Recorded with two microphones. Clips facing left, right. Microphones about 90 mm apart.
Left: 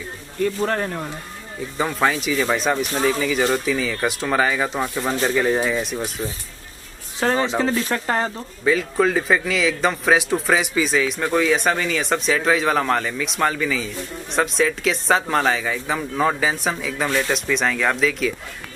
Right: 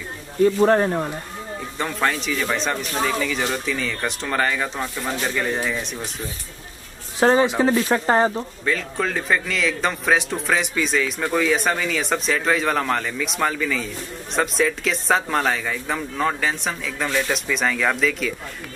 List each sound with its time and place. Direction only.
0.4 s speech: 25° right (ahead or behind)
1.8 s speech: 5° left (ahead or behind)
5.2 s speech: 5° left (ahead or behind)
7.2 s speech: 15° right (ahead or behind)
8.6 s speech: 5° left (ahead or behind)